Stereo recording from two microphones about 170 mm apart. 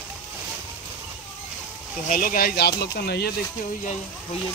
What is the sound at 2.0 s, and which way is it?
Speech, 55° left (ahead or behind).